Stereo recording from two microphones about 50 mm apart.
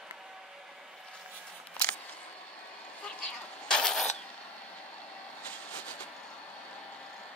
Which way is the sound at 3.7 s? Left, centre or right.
Centre.